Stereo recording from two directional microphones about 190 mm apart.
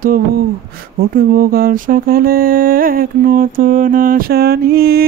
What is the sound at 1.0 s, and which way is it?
Mantra, 50° right (ahead or behind).